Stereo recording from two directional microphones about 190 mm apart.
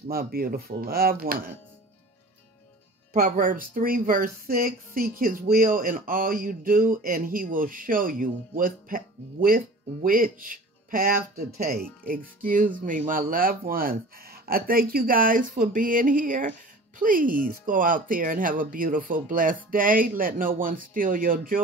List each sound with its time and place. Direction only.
0.1 s speech: 50° right (ahead or behind)
3.1 s speech: 45° right (ahead or behind)